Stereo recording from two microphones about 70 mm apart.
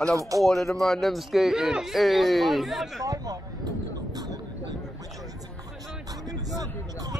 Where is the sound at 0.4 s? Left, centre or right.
Centre.